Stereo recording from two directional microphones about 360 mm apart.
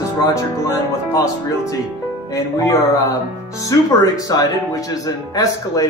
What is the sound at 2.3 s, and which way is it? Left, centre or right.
Speech, centre.